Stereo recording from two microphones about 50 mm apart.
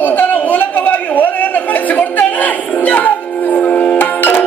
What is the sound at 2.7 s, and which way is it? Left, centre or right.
Music, left.